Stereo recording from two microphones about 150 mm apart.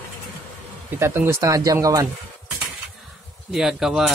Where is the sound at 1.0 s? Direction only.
15° right (ahead or behind).